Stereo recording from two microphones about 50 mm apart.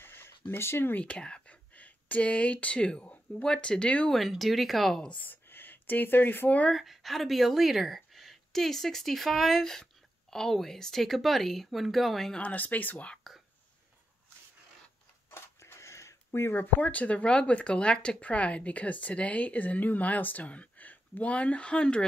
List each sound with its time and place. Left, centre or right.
0.0 s a sound: left
0.9 s speech: left
3.4 s a woman's voice: centre
4.3 s speech: centre
5.1 s speech: left
6.7 s speech: centre
12.4 s speech: left
13.2 s whispering: centre
15.2 s a sound: left
16.5 s a woman's voice: left